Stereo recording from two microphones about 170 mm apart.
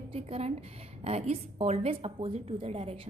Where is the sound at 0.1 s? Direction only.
35° right (ahead or behind).